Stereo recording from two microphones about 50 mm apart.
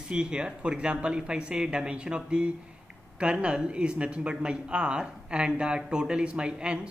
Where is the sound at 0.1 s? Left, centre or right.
Centre.